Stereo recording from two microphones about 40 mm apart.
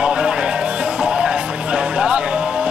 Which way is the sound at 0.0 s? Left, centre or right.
Right.